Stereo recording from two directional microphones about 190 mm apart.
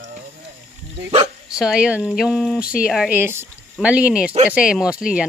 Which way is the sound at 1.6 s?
5° right (ahead or behind).